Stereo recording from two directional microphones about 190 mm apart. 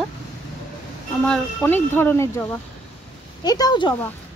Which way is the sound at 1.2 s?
5° left (ahead or behind).